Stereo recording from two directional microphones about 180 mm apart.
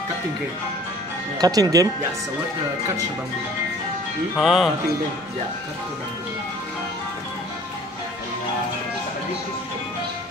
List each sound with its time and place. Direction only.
1.4 s speech: 20° right (ahead or behind)
4.4 s speech: centre (ahead or behind)